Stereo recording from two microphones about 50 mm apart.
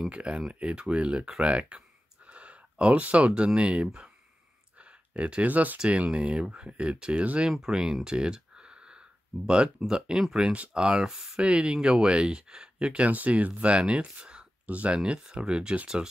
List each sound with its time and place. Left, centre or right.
0.1 s speech: right
5.1 s speech: right
5.8 s speech: right
7.6 s a sound: centre
9.5 s speech: centre
11.4 s speech: right